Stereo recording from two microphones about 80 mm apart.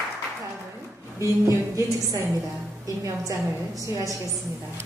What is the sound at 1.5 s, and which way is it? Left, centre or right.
A woman's voice, right.